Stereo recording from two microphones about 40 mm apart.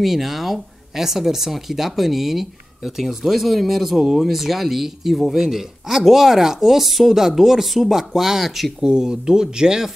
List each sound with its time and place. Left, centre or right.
0.0 s speech: centre
8.8 s speech: centre